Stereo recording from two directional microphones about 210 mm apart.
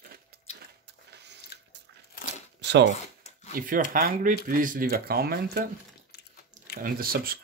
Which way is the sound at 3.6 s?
40° right (ahead or behind).